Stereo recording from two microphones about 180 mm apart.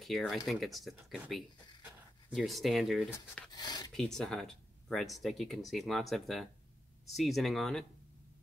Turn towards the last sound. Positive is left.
turn(degrees=0)  # may be behind; listen again after turning